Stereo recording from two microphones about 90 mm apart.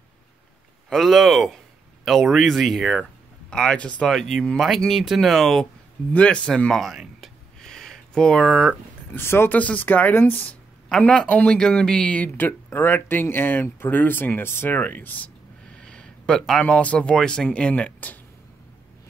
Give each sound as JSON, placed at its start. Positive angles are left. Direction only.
{"t": 0.8, "sound": "speech", "side_deg": 0}
{"t": 7.6, "sound": "a sound", "side_deg": 5}
{"t": 9.1, "sound": "speech", "side_deg": 25}
{"t": 10.9, "sound": "speech", "side_deg": 10}